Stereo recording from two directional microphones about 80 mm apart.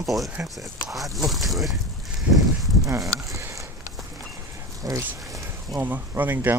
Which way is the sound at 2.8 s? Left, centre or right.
Right.